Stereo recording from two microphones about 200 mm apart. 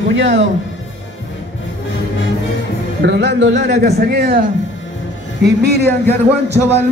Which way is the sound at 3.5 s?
40° right (ahead or behind).